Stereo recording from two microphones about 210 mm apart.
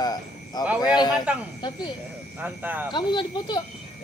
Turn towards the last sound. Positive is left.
turn(degrees=20)  # may be behind; listen again after turning